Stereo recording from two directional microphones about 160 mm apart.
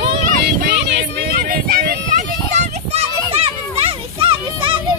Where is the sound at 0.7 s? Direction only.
90° right; by 2.3 s 70° right (ahead or behind).